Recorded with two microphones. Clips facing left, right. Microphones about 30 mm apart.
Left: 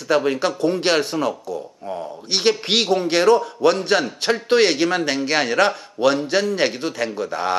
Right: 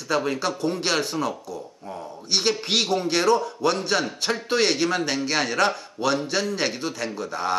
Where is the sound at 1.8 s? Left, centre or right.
Left.